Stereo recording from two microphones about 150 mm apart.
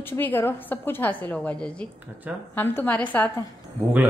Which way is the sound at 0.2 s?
15° left (ahead or behind).